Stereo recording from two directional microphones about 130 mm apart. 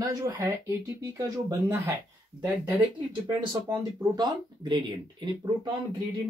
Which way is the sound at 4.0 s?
35° right (ahead or behind).